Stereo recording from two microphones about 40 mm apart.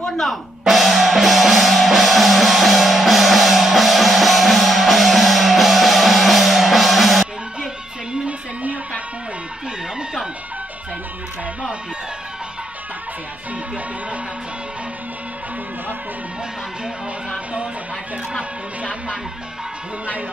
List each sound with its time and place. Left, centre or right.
0.7 s music: centre
18.8 s music: right